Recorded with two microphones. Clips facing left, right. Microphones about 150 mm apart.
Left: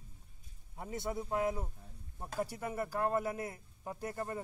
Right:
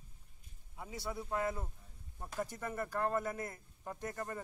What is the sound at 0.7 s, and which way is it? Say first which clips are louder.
Speech: left 5 dB; 50° left (ahead or behind).